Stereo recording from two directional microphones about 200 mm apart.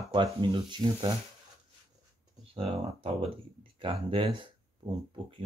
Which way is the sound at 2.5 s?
30° right (ahead or behind).